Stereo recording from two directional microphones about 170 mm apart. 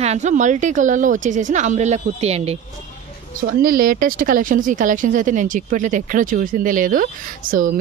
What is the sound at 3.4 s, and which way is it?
Speech, 60° right (ahead or behind).